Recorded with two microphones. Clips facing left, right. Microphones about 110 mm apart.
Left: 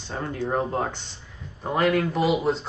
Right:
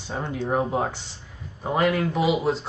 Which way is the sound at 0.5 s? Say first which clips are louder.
Right 3 dB; 10° right (ahead or behind).